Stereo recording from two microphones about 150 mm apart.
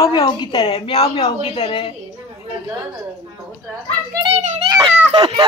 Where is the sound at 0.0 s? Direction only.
25° left (ahead or behind).